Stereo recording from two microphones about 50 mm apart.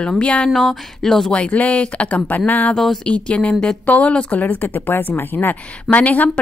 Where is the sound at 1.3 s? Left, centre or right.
Left.